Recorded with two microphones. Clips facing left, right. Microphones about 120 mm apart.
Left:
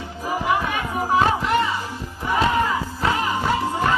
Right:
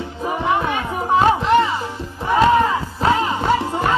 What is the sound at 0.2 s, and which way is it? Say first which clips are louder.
Music: right 2 dB; 25° right (ahead or behind).